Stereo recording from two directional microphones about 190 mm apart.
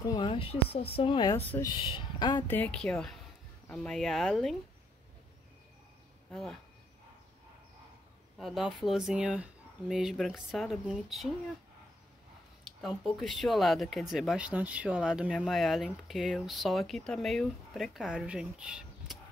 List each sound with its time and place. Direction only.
0.0 s speech: 25° left (ahead or behind)
1.3 s speech: 10° left (ahead or behind)
1.7 s speech: 25° left (ahead or behind)
2.4 s speech: 10° left (ahead or behind)
6.3 s speech: centre (ahead or behind)
8.4 s speech: centre (ahead or behind)
12.6 s speech: centre (ahead or behind)